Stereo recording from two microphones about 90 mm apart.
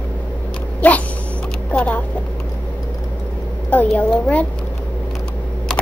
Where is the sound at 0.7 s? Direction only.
15° left (ahead or behind).